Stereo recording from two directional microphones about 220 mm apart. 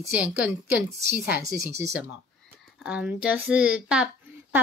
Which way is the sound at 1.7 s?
15° right (ahead or behind).